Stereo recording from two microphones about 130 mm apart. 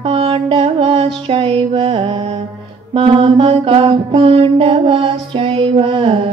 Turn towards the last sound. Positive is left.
turn(degrees=-45)  # may be behind; listen again after turning